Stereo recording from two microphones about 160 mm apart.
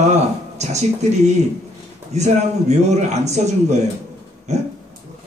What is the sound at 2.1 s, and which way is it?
A man's voice, 45° right (ahead or behind).